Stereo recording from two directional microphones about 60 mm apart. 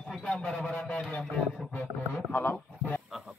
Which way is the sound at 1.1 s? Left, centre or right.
Centre.